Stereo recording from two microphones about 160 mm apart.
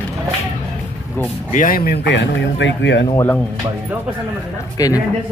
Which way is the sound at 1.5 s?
55° left (ahead or behind).